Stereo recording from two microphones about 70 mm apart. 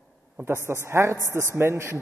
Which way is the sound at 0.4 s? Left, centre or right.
Right.